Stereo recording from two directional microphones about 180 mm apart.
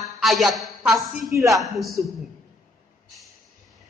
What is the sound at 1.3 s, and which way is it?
Speech, 15° right (ahead or behind).